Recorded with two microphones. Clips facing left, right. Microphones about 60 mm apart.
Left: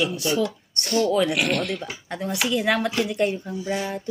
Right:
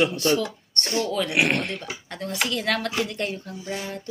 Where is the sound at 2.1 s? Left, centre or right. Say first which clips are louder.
Left 3 dB; centre.